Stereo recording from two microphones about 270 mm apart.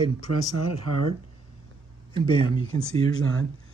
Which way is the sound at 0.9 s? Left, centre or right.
Right.